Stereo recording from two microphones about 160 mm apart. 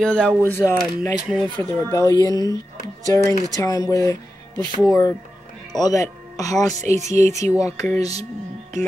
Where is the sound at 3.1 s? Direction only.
20° left (ahead or behind).